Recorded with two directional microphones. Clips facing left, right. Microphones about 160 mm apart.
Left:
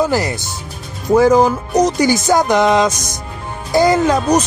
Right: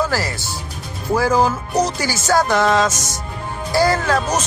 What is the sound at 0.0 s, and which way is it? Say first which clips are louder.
Speech: left 5 dB; 20° left (ahead or behind).